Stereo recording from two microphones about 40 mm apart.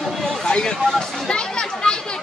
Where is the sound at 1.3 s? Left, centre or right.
Left.